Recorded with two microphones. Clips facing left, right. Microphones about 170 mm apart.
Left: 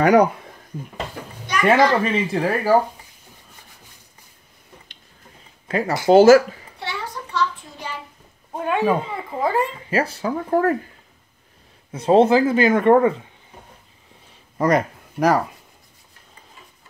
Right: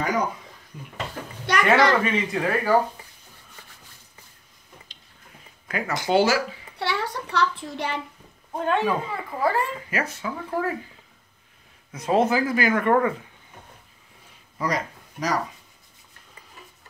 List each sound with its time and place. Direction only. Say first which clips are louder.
0.0 s speech: left 11 dB; 70° left (ahead or behind)
1.4 s a sound: left 3 dB; 70° right (ahead or behind)
2.3 s speech: left 4 dB; 35° left (ahead or behind)
5.7 s speech: left 8 dB; 35° left (ahead or behind)
6.8 s a sound: right 3 dB; 70° right (ahead or behind)
8.5 s a child's voice: left 3 dB; 10° left (ahead or behind)
9.8 s speech: left 7 dB; 30° left (ahead or behind); by 10.8 s 50° left (ahead or behind)
11.9 s speech: left 7 dB; 30° left (ahead or behind)
14.6 s a man's voice: left 9 dB; 55° left (ahead or behind)